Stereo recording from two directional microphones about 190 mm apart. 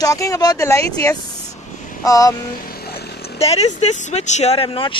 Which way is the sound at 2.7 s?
55° left (ahead or behind).